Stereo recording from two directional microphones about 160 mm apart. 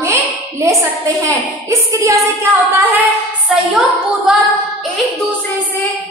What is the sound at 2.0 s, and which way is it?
Speech, 15° right (ahead or behind).